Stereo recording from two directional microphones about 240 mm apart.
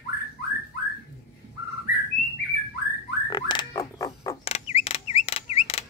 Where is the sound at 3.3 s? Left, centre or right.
Centre.